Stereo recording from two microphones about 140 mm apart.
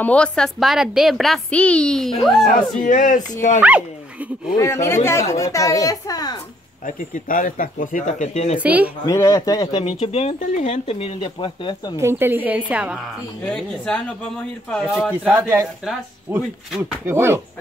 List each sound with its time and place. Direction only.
0.0 s a woman's voice: 10° left (ahead or behind)
2.8 s speech: 65° left (ahead or behind)
3.6 s speech: 10° right (ahead or behind)
4.6 s a woman's voice: 20° left (ahead or behind)
6.9 s speech: 70° left (ahead or behind)
8.5 s a woman's voice: 10° right (ahead or behind)
9.0 s speech: 25° left (ahead or behind); by 10.3 s 45° left (ahead or behind)
10.4 s speech: 55° left (ahead or behind); by 12.0 s 35° left (ahead or behind)
12.0 s a woman's voice: 15° right (ahead or behind)
13.5 s a woman's voice: 5° left (ahead or behind); by 15.7 s 15° right (ahead or behind)
17.0 s a woman's voice: 15° right (ahead or behind)